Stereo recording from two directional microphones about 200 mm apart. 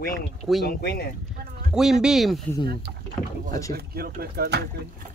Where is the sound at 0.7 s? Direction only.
50° left (ahead or behind).